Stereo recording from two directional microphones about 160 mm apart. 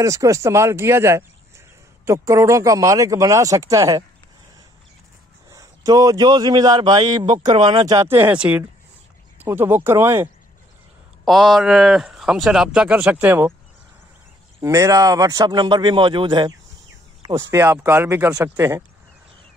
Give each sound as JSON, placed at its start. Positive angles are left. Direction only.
{"t": 0.0, "sound": "speech", "side_deg": -20}
{"t": 5.5, "sound": "a man's voice", "side_deg": -20}
{"t": 11.2, "sound": "a man's voice", "side_deg": 0}
{"t": 14.6, "sound": "speech", "side_deg": -20}
{"t": 17.3, "sound": "speech", "side_deg": -15}